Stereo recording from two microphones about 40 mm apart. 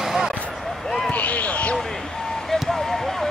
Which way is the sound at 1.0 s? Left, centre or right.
Left.